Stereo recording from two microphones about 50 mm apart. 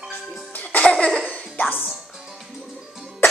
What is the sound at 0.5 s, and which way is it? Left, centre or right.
Music, left.